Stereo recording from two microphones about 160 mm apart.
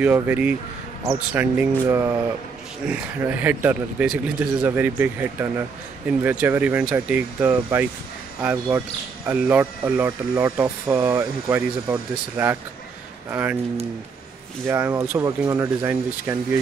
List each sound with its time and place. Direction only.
0.0 s speech: 10° right (ahead or behind)
14.7 s speech: 15° right (ahead or behind)